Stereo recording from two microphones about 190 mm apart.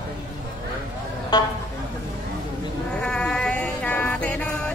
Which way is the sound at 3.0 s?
5° left (ahead or behind).